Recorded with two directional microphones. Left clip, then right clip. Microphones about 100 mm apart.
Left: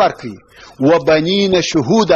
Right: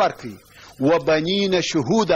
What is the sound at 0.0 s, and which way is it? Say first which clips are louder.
A man's voice: left 6 dB; 35° right (ahead or behind).